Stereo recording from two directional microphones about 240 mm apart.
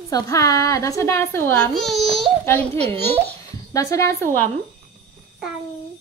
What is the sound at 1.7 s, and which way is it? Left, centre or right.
A child's voice, centre.